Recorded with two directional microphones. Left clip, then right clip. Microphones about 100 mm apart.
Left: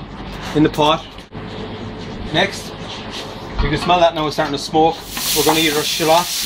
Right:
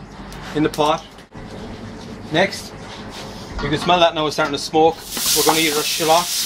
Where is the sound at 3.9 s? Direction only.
Centre (ahead or behind).